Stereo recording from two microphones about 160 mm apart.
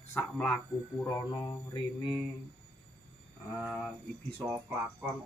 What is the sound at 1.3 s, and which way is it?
Mantra, 30° left (ahead or behind).